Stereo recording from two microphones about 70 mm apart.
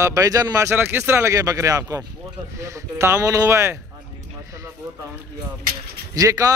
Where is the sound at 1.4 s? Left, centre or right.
Right.